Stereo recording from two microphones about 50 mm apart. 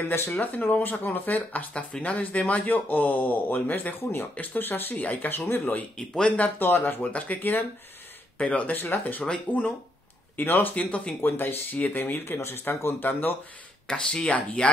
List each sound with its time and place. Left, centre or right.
0.0 s speech: left
0.3 s speech: left
1.7 s speech: left
2.1 s speech: left
6.2 s speech: left
6.6 s speech: left
7.0 s speech: left
8.4 s speech: centre
8.6 s speech: left
10.7 s speech: left
11.1 s speech: left
13.8 s speech: centre